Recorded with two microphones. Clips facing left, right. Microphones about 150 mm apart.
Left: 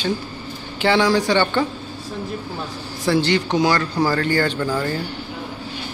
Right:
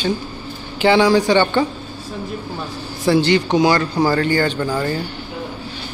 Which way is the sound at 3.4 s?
15° right (ahead or behind).